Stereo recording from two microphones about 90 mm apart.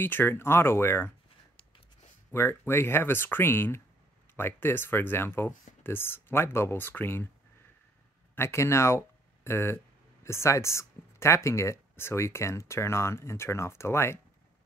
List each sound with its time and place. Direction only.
0.0 s speech: 25° left (ahead or behind)
2.3 s speech: 25° left (ahead or behind)
8.4 s speech: 30° left (ahead or behind)